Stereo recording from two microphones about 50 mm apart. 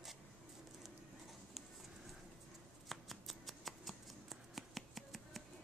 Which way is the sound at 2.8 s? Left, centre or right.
Centre.